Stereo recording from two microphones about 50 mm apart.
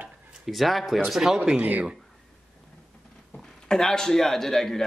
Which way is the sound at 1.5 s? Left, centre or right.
Right.